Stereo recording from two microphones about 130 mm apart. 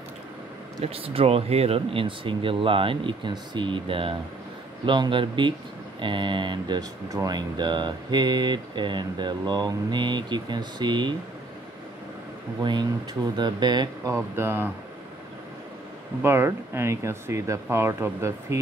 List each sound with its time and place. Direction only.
0.8 s speech: 45° right (ahead or behind)
13.4 s speech: 35° right (ahead or behind)
14.1 s speech: 20° right (ahead or behind)
16.2 s speech: 20° right (ahead or behind)